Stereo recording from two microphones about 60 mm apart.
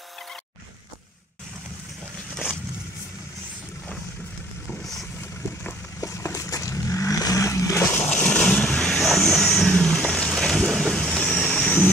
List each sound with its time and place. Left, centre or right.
5.9 s vehicle: left
8.1 s vehicle: centre
8.6 s vehicle: centre